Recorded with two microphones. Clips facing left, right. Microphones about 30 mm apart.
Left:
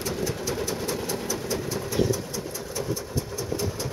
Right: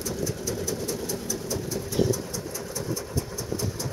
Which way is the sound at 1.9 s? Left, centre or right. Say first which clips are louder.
Even; centre.